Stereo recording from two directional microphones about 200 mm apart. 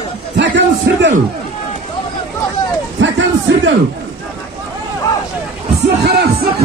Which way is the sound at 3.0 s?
65° right (ahead or behind).